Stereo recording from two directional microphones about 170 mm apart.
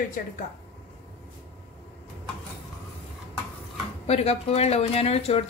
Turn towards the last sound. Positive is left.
turn(degrees=35)  # may be behind; listen again after turning